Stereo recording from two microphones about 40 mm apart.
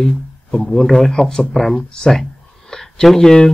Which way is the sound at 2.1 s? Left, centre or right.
Centre.